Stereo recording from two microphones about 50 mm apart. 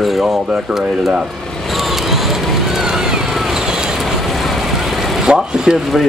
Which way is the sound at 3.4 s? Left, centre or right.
Centre.